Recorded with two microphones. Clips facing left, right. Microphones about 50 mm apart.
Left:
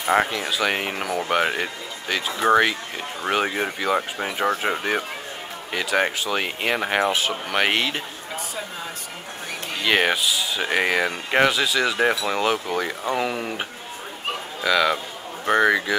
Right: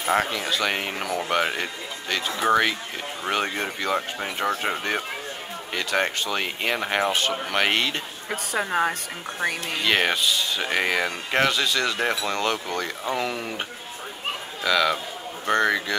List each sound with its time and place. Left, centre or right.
0.0 s speech: centre
8.3 s a woman's voice: right
9.8 s speech: centre